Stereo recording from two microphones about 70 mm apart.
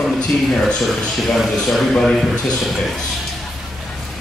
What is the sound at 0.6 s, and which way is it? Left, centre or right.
A man's voice, centre.